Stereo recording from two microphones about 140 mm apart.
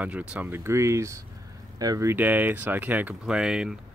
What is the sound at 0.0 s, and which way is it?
Speech, 10° right (ahead or behind).